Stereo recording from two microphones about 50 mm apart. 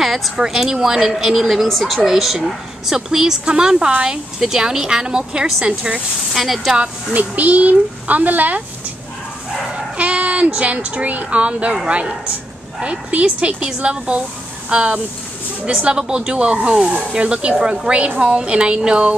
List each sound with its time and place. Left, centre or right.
0.0 s a woman's voice: centre
6.3 s speech: centre
7.2 s a child's voice: right
9.9 s speech: right